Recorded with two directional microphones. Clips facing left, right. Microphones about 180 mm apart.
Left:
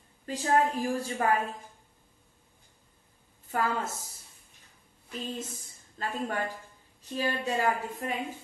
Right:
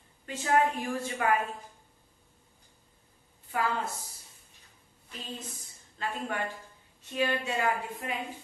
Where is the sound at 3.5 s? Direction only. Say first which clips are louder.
Left 1 dB; 45° left (ahead or behind).